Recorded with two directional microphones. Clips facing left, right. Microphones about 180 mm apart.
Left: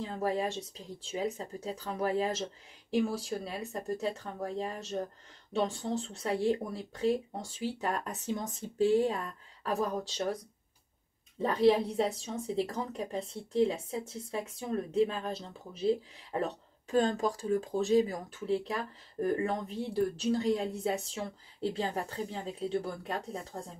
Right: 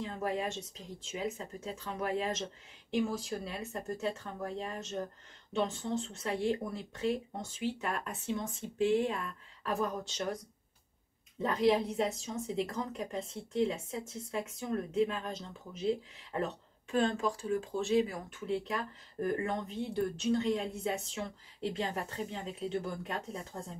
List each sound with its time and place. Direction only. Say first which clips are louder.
0.0 s a woman's voice: left 3 dB; 35° left (ahead or behind)
11.4 s a woman's voice: left 3 dB; 35° left (ahead or behind)